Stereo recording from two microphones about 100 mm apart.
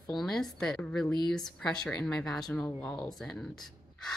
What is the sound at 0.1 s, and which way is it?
A woman's voice, 5° left (ahead or behind).